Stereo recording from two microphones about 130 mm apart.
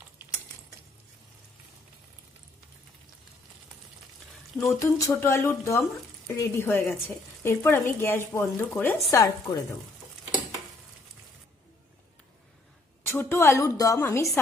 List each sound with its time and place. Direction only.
4.7 s speech: 25° left (ahead or behind)
9.1 s speech: 30° left (ahead or behind)
13.0 s speech: 15° left (ahead or behind)